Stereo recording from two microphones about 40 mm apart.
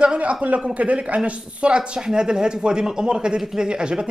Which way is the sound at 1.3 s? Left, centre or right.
Right.